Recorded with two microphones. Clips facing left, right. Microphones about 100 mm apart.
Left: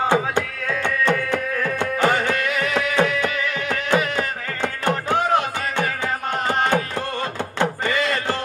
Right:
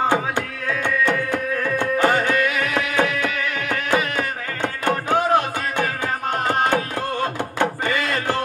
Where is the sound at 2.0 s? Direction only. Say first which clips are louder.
Even; 40° right (ahead or behind).